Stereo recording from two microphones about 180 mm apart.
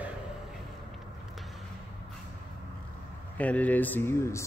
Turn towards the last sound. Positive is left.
turn(degrees=15)  # may be behind; listen again after turning